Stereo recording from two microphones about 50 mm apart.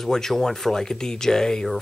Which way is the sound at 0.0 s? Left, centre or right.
Centre.